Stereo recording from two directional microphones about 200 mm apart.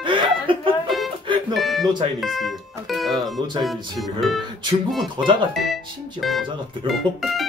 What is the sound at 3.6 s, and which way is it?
Speech, centre (ahead or behind).